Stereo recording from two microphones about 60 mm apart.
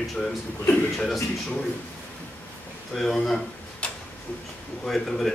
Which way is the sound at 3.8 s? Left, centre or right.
Left.